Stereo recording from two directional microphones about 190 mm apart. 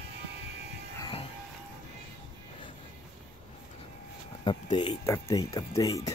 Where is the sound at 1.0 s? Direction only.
25° left (ahead or behind).